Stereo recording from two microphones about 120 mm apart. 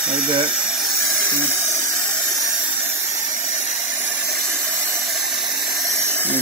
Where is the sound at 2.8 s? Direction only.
25° right (ahead or behind).